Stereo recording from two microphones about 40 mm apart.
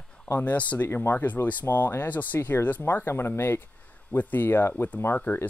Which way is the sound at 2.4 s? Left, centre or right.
Left.